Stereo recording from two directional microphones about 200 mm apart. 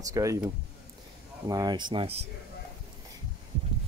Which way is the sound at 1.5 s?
20° right (ahead or behind).